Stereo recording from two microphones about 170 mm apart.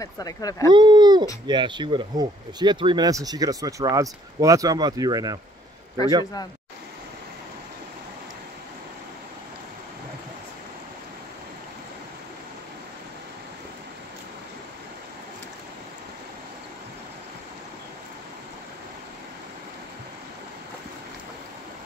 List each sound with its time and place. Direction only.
0.0 s speech: 20° left (ahead or behind)
0.7 s speech: 25° right (ahead or behind)